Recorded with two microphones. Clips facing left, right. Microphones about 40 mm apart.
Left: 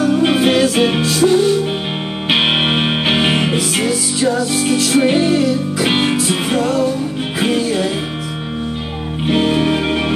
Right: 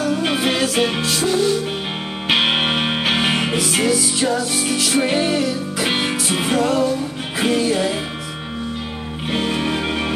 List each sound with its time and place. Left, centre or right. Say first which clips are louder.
0.0 s music: left 6 dB; centre
5.9 s music: left 5 dB; centre
6.2 s music: left 2 dB; centre
9.3 s music: left 6 dB; centre